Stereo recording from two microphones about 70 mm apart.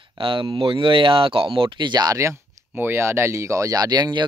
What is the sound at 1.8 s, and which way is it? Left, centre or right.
Speech, right.